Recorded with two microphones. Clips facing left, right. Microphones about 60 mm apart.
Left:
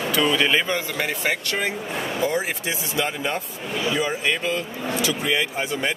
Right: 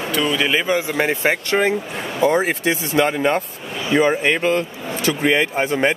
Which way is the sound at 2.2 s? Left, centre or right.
Right.